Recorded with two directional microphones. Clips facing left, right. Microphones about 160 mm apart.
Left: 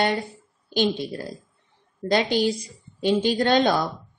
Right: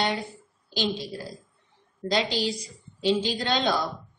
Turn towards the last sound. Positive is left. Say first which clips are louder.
# left 6 dB
turn(degrees=50)  # may be behind; listen again after turning